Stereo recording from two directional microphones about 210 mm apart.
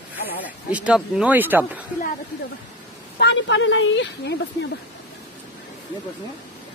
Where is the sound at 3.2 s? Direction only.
55° left (ahead or behind).